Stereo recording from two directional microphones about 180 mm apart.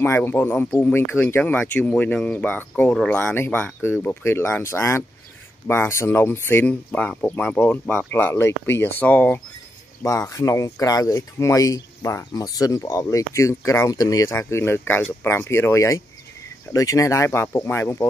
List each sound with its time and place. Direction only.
0.0 s speech: 10° left (ahead or behind)